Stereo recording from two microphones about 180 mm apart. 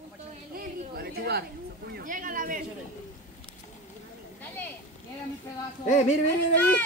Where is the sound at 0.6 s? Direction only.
60° right (ahead or behind).